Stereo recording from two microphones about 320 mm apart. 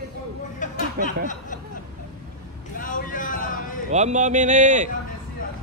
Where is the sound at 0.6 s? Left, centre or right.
Left.